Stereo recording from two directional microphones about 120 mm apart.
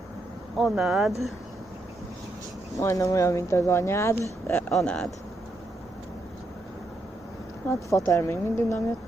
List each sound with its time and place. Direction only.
0.6 s speech: centre (ahead or behind)
2.8 s speech: 25° left (ahead or behind)
4.6 s speech: 5° left (ahead or behind)
7.6 s speech: 25° left (ahead or behind)